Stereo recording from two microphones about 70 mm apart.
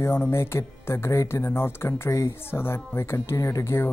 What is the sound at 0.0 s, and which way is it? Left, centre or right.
Speech, left.